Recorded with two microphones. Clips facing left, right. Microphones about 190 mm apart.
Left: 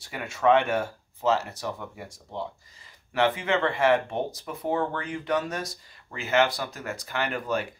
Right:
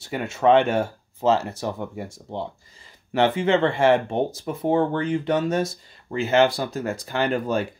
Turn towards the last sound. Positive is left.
turn(degrees=-30)  # may be behind; listen again after turning